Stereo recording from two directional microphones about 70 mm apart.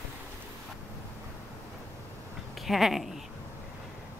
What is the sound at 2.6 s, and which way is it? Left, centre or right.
Speech, centre.